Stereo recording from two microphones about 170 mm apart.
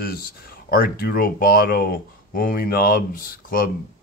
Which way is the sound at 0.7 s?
60° left (ahead or behind).